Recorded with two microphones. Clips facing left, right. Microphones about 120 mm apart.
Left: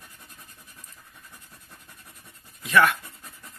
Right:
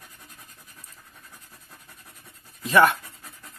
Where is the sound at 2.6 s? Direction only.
30° right (ahead or behind).